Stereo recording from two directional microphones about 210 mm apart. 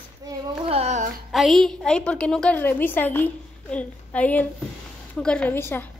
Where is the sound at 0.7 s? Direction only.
30° right (ahead or behind).